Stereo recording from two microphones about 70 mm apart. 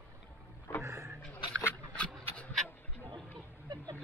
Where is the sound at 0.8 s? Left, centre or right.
Right.